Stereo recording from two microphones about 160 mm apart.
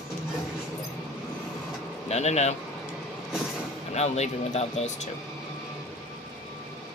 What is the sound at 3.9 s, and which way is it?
Speech, 45° left (ahead or behind).